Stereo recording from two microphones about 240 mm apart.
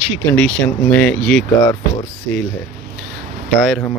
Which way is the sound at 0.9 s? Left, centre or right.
Centre.